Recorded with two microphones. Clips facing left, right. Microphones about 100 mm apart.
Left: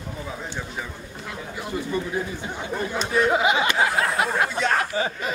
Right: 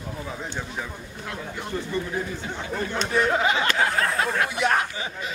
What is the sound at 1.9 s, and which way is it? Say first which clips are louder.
Speech: left 2 dB; 15° left (ahead or behind).